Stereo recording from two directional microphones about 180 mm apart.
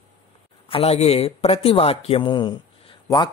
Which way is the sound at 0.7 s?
35° left (ahead or behind).